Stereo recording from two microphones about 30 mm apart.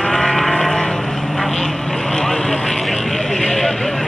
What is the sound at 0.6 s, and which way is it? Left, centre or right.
Vehicle, centre.